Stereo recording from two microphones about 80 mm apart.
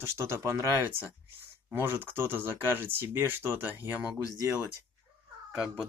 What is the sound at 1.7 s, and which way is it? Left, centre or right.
Speech, right.